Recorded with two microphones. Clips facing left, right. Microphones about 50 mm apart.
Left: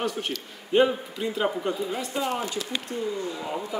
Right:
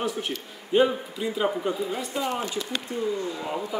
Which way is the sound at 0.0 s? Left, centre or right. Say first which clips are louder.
Even; centre.